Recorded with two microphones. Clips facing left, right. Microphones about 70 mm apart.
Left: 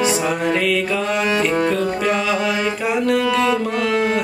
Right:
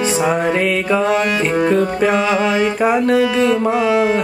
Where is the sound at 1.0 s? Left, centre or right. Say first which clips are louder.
Right 3 dB; centre.